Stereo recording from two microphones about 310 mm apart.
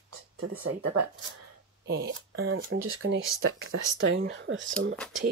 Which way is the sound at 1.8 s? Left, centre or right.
Right.